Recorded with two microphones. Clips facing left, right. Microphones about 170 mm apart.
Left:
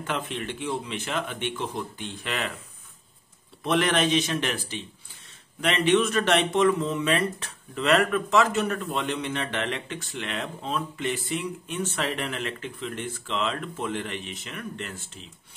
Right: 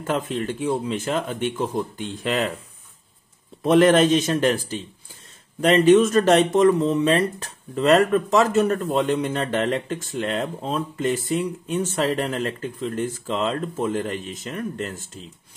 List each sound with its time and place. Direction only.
0.0 s speech: 40° right (ahead or behind)
3.6 s a man's voice: 45° right (ahead or behind)